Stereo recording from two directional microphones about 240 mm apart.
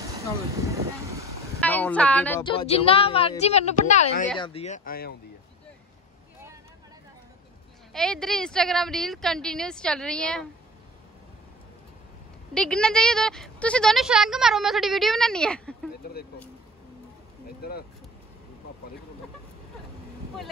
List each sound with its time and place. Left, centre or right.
1.6 s a woman's voice: centre
2.4 s speech: left
7.9 s speech: centre
12.5 s speech: centre